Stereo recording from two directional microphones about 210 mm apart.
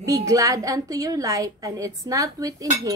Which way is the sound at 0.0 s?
15° right (ahead or behind).